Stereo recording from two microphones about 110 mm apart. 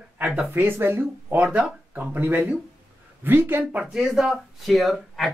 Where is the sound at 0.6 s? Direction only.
20° right (ahead or behind).